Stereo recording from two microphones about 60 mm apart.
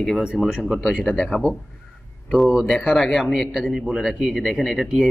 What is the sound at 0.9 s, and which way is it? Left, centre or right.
Speech, left.